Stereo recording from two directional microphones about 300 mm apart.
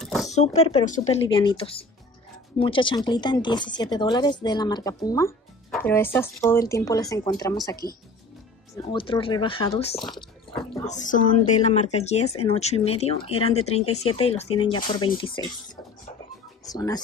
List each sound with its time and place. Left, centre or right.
0.0 s a sound: centre
0.3 s speech: left
8.9 s speech: centre
9.9 s music: centre
10.9 s speech: left